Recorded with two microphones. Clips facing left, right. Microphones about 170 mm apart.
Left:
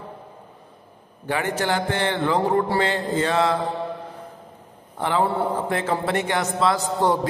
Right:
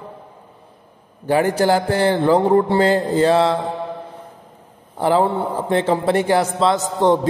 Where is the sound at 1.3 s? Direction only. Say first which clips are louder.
Right 8 dB; 35° right (ahead or behind).